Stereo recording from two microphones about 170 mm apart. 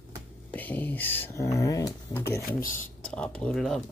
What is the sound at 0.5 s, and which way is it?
Speech, 10° left (ahead or behind).